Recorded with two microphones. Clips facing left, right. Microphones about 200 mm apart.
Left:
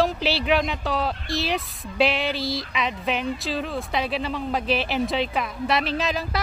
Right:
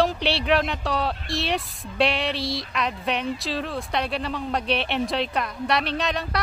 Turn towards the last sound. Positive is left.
turn(degrees=0)  # may be behind; listen again after turning